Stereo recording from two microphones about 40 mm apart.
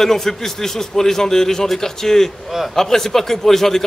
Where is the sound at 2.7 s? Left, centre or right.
Centre.